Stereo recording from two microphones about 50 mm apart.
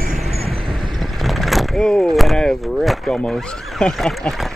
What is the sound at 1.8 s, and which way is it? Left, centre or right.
Speech, centre.